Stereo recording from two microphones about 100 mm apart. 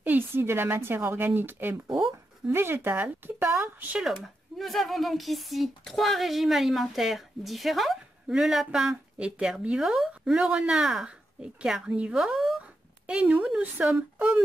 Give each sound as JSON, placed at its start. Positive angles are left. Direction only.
{"t": 0.0, "sound": "a woman's voice", "side_deg": -20}
{"t": 4.0, "sound": "speech", "side_deg": 0}